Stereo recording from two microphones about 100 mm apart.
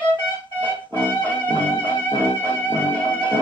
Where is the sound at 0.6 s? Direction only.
20° left (ahead or behind).